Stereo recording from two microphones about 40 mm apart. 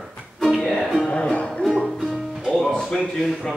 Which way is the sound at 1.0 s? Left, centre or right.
Left.